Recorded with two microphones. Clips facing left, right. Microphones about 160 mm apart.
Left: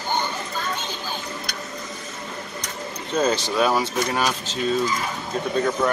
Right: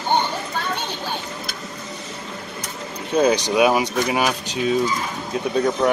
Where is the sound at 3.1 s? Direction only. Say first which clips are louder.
Right 4 dB; 15° right (ahead or behind).